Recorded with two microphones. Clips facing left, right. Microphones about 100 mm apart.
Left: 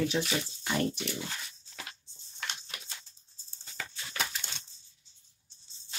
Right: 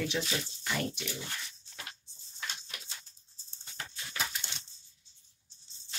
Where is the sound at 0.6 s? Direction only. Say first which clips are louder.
Left 5 dB; 40° left (ahead or behind).